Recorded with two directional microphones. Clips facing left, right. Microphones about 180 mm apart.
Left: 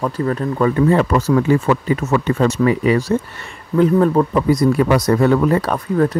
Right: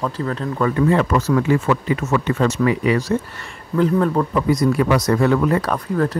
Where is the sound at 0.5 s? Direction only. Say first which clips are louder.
Left 2 dB; 30° left (ahead or behind).